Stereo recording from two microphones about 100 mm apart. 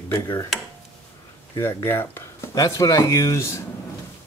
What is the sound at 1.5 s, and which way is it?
Speech, 25° left (ahead or behind).